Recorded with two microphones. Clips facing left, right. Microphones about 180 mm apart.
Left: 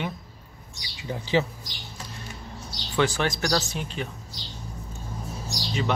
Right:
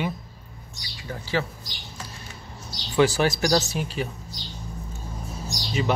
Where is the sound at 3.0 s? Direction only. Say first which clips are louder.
Right 4 dB; 10° right (ahead or behind).